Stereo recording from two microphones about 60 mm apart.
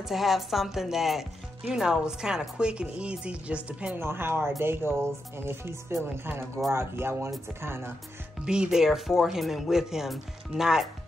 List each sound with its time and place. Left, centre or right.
0.0 s speech: centre
2.5 s music: centre
4.0 s speech: right
8.5 s speech: centre